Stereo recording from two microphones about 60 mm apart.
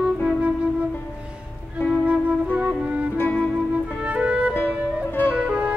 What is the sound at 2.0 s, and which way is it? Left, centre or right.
Flute, right.